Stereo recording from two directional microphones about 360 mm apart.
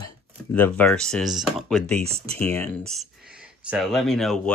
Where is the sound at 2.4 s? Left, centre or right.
Centre.